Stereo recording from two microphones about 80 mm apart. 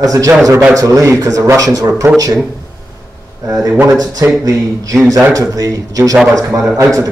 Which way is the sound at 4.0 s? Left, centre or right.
Right.